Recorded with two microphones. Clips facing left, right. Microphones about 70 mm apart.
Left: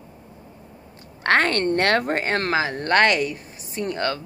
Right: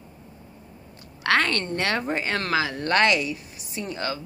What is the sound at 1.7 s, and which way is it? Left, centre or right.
Speech, left.